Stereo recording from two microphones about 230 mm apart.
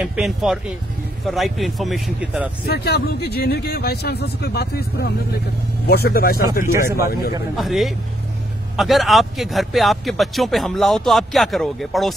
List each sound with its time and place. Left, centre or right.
0.0 s speech: centre
2.7 s speech: left
7.5 s speech: centre